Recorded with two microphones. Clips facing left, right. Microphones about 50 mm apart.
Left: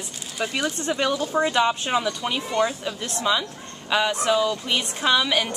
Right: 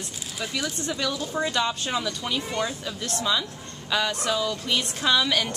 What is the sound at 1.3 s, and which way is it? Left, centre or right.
A woman's voice, left.